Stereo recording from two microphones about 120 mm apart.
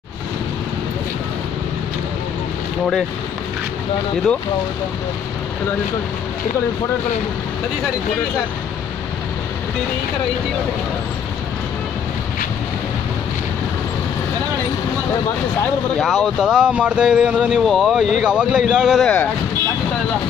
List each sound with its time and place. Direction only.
16.0 s speech: centre (ahead or behind)